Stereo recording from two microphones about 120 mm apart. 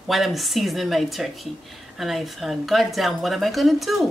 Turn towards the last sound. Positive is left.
turn(degrees=0)  # may be behind; listen again after turning